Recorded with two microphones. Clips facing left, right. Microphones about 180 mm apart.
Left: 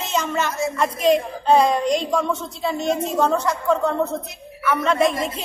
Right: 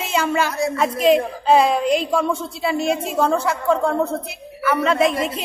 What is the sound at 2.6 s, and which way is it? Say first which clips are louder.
Speech: right 1 dB; 5° right (ahead or behind).